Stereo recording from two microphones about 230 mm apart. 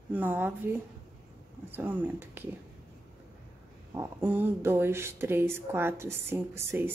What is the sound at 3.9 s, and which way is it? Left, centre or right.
Speech, centre.